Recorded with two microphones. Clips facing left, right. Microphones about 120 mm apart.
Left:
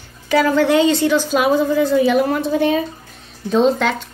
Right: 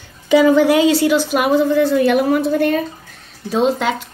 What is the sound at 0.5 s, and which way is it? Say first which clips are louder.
Speech: right 2 dB; 10° right (ahead or behind).